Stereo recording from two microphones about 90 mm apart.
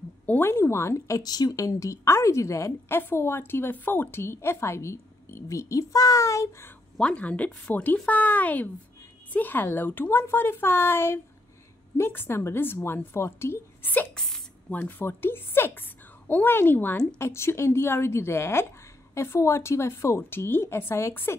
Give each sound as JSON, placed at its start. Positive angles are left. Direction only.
{"t": 0.3, "sound": "a woman's voice", "side_deg": 25}
{"t": 7.0, "sound": "a woman's voice", "side_deg": 15}
{"t": 14.1, "sound": "a woman's voice", "side_deg": 5}
{"t": 14.7, "sound": "a woman's voice", "side_deg": 20}